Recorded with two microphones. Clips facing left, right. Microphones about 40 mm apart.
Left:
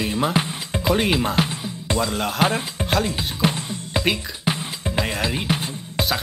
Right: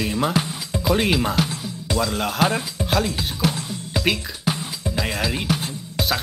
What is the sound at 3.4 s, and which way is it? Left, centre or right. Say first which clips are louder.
Music: left 2 dB; left.